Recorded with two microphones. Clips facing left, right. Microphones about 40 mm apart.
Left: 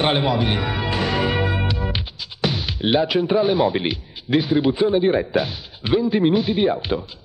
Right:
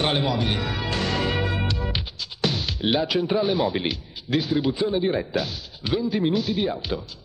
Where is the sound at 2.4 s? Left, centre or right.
Centre.